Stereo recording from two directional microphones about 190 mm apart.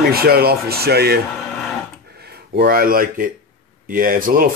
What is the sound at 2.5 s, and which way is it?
Speech, 50° right (ahead or behind).